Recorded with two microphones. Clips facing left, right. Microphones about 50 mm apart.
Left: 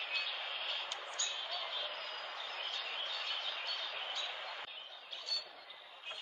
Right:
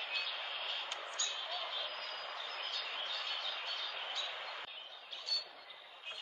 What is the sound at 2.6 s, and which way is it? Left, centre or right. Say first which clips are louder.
Bird: left 1 dB; left.